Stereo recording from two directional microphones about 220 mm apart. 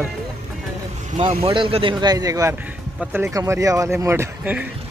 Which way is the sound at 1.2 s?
25° right (ahead or behind).